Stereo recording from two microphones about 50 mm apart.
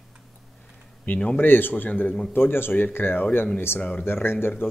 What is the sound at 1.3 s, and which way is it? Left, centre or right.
A man's voice, left.